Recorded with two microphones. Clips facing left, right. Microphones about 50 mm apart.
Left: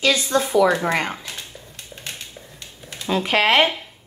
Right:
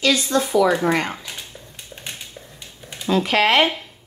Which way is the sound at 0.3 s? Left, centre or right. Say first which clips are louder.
Left 1 dB; left.